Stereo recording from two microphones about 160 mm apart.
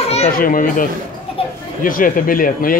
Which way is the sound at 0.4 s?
60° left (ahead or behind).